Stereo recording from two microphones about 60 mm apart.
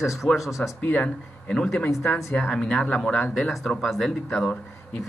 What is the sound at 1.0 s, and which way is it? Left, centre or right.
Speech, centre.